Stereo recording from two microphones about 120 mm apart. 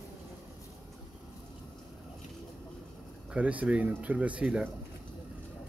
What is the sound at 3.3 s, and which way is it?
Speech, 10° right (ahead or behind).